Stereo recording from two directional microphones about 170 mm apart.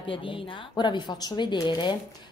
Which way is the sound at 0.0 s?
30° left (ahead or behind).